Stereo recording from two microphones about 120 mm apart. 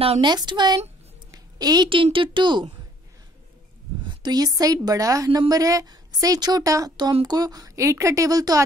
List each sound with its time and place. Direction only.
0.2 s a woman's voice: 40° right (ahead or behind)
1.3 s a sound: 35° right (ahead or behind)
2.1 s speech: 45° right (ahead or behind)
4.0 s a woman's voice: 40° right (ahead or behind)